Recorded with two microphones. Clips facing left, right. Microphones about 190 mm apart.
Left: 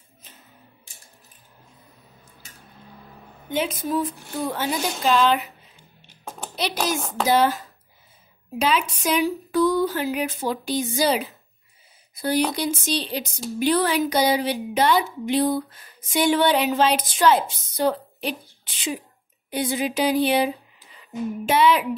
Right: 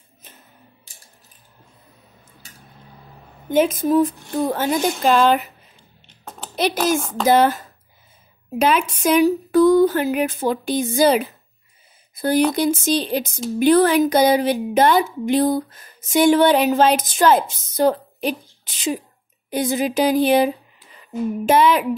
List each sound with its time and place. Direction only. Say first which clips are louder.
3.4 s speech: right 8 dB; 45° right (ahead or behind)
6.5 s a child's voice: right 6 dB; 50° right (ahead or behind)